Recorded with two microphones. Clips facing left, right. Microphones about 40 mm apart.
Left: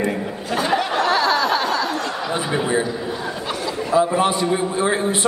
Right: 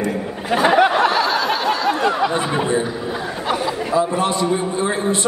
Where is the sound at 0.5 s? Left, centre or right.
Right.